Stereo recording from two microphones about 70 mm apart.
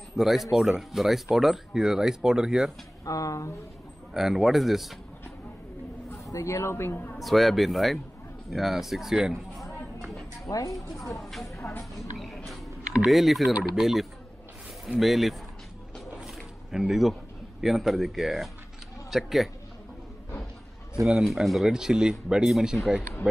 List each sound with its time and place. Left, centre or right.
0.1 s speech: centre
3.1 s speech: left
4.1 s speech: centre
6.3 s a woman's voice: left
7.2 s speech: centre
10.7 s speech: centre
16.2 s a sound: centre
17.6 s speech: centre
21.2 s speech: centre